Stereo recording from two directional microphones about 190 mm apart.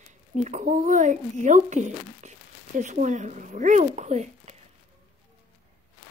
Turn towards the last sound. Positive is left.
turn(degrees=-35)  # may be behind; listen again after turning